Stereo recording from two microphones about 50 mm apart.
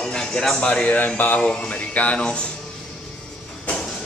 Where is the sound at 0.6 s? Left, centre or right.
Left.